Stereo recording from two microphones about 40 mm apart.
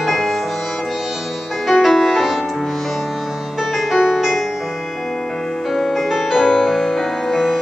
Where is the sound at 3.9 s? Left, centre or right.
Centre.